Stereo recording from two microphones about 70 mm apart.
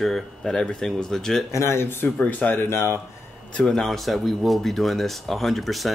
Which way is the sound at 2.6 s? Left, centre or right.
Left.